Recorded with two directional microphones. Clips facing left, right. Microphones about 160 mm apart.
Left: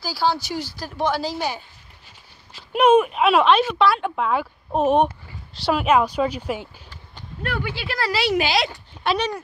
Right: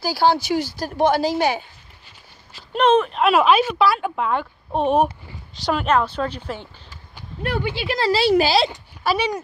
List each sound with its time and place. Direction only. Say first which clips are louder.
0.0 s speech: right 4 dB; 55° right (ahead or behind)
2.7 s speech: left 1 dB; 10° left (ahead or behind)
7.5 s speech: right 5 dB; 20° right (ahead or behind)
9.0 s speech: right 1 dB; 5° right (ahead or behind)